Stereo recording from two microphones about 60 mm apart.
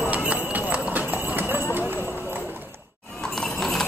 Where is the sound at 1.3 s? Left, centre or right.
Right.